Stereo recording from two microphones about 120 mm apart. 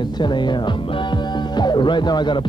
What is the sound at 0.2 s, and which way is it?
Music, 40° left (ahead or behind).